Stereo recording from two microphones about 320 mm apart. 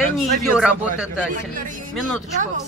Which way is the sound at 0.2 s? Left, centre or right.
Centre.